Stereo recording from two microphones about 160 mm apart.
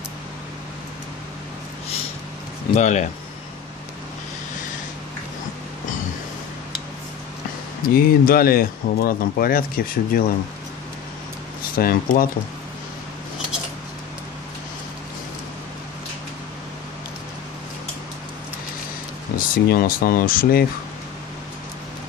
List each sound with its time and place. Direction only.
2.7 s speech: 50° left (ahead or behind)
7.9 s speech: 65° left (ahead or behind)
11.7 s speech: 65° left (ahead or behind)
19.3 s speech: 65° left (ahead or behind)